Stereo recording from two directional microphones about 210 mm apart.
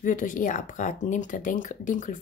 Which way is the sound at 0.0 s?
40° left (ahead or behind).